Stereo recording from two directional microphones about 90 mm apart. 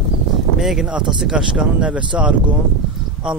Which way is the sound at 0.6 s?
5° right (ahead or behind).